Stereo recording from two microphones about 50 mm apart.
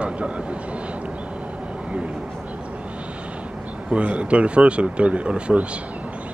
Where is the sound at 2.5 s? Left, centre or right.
Right.